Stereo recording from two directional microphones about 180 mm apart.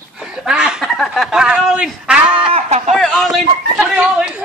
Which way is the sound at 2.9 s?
Centre (ahead or behind).